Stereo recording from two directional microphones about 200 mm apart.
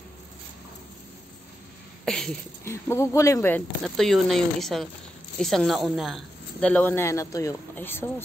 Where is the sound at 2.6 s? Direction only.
15° left (ahead or behind).